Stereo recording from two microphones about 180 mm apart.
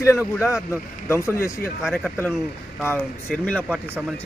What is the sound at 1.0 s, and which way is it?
Speech, 15° left (ahead or behind).